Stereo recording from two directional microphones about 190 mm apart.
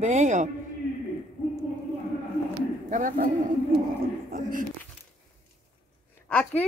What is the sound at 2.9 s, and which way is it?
Speech, 45° right (ahead or behind).